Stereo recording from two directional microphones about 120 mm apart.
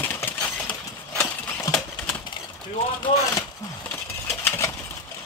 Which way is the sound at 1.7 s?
30° left (ahead or behind).